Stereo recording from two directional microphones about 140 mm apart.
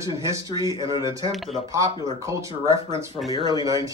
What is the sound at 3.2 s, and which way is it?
Speech, 35° left (ahead or behind).